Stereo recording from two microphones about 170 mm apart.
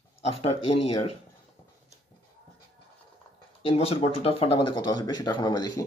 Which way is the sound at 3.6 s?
35° left (ahead or behind).